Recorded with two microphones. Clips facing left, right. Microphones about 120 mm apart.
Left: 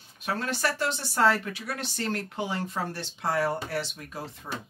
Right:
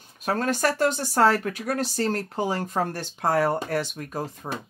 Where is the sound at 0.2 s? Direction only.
45° right (ahead or behind).